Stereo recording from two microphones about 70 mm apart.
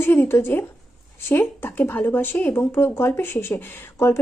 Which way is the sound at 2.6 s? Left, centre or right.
Left.